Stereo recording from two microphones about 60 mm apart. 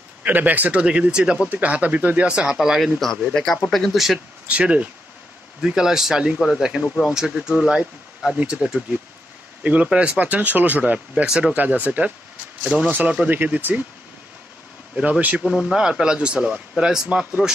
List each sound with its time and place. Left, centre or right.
0.2 s speech: right; by 1.5 s centre
1.5 s speech: right
2.2 s speech: centre
3.3 s speech: centre
3.7 s speech: centre
4.5 s speech: right; by 6.6 s centre
6.6 s speech: centre
9.6 s speech: right
11.2 s speech: centre
11.5 s speech: right
13.3 s speech: right
15.0 s speech: right
15.4 s speech: centre